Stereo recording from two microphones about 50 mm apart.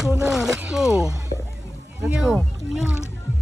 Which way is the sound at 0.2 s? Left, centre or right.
Centre.